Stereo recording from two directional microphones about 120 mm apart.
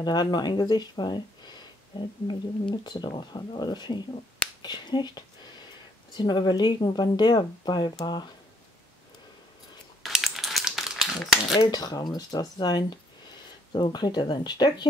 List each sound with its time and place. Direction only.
0.0 s speech: 35° left (ahead or behind)
10.0 s crumpling: centre (ahead or behind)
11.6 s speech: 35° left (ahead or behind)